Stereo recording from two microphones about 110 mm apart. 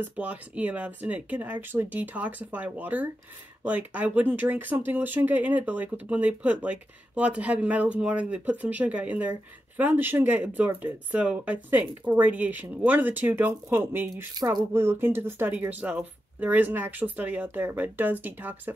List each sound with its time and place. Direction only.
0.0 s speech: 15° right (ahead or behind)
14.3 s speech: 40° right (ahead or behind)
14.7 s speech: 20° right (ahead or behind)